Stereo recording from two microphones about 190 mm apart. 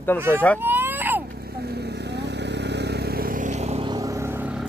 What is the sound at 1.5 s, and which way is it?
Vehicle, 55° right (ahead or behind).